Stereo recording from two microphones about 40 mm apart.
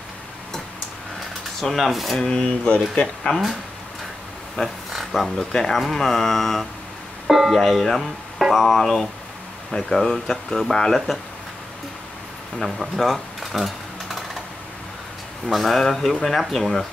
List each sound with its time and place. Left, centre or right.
1.6 s speech: centre
2.1 s speech: centre
4.6 s speech: centre
5.4 s speech: centre
7.2 s music: centre
7.5 s speech: centre
8.4 s a sound: centre
8.7 s speech: centre
12.5 s typing: centre
15.4 s speech: centre